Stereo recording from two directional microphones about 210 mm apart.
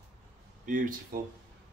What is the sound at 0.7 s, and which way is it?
Speech, 40° right (ahead or behind).